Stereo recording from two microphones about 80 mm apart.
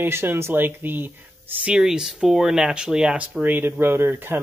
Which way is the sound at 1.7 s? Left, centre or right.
Centre.